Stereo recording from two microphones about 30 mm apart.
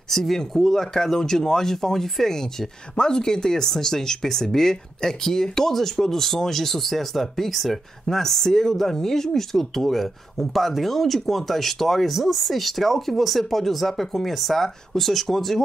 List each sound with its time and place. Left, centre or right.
0.1 s speech: centre
3.0 s speech: left; by 15.6 s centre